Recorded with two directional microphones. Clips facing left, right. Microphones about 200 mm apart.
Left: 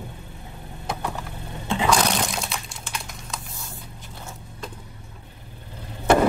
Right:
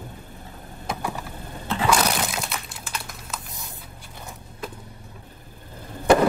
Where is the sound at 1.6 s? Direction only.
15° left (ahead or behind).